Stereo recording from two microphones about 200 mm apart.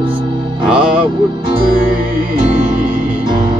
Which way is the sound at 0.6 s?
5° right (ahead or behind).